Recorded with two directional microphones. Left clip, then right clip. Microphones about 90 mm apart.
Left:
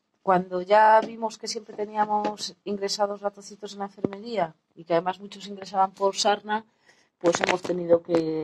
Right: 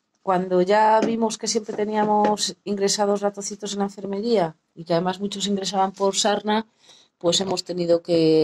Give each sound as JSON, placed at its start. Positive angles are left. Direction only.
{"t": 0.2, "sound": "speech", "side_deg": -25}